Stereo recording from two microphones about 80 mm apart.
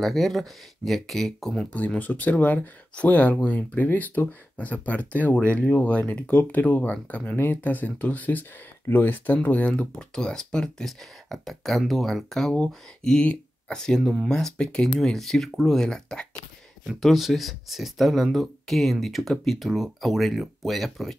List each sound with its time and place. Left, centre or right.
0.0 s speech: centre
1.7 s speech: centre